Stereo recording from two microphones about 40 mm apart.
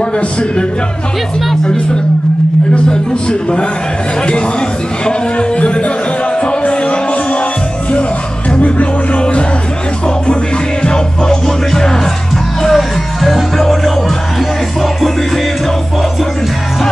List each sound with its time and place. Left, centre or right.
2.7 s a man's voice: left
5.0 s speech: left
6.4 s music: left
8.5 s music: left
10.8 s music: left; by 15.4 s centre